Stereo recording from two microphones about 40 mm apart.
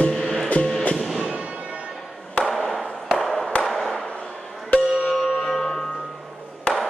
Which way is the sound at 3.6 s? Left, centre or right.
Centre.